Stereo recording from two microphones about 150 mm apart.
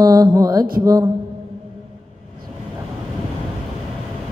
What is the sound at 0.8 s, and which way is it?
Mantra, 25° right (ahead or behind).